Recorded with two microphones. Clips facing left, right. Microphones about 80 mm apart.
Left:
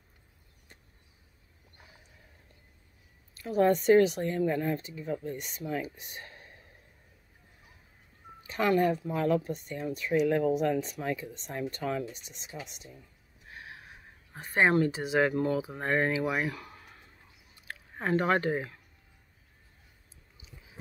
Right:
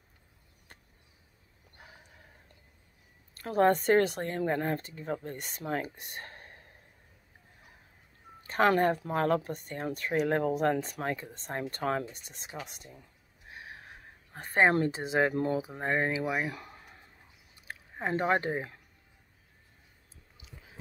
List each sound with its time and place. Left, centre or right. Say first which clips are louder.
3.3 s speech: even; right
8.5 s speech: right 1 dB; right
13.5 s a sound: even; right
15.8 s speech: left 2 dB; centre
16.5 s a sound: left 1 dB; right
17.6 s speech: left 2 dB; centre